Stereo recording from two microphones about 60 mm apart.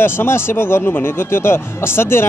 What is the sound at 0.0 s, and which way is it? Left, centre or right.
Speech, left.